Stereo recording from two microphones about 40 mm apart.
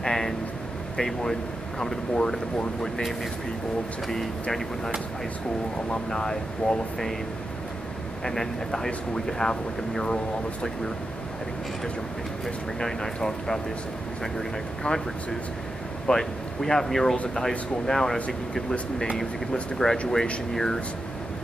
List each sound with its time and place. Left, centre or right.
0.0 s a sound: centre
0.9 s speech: centre
4.1 s speech: centre
6.0 s speech: centre
8.2 s speech: centre
12.8 s speech: centre
14.8 s speech: left
16.1 s speech: centre